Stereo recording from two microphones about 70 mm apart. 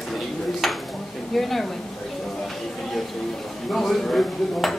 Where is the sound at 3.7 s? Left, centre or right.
Centre.